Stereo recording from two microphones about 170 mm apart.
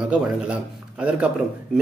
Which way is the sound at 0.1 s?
5° right (ahead or behind).